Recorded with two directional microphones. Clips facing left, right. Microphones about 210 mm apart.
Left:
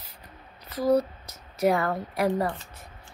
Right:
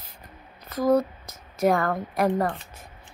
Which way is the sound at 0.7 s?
50° right (ahead or behind).